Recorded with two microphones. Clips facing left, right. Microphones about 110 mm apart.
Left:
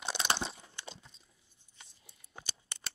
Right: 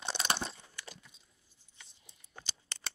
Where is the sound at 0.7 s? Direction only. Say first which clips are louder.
Left 2 dB; 25° left (ahead or behind).